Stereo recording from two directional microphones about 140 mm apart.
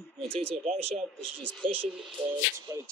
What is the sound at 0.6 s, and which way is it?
Speech, 55° right (ahead or behind).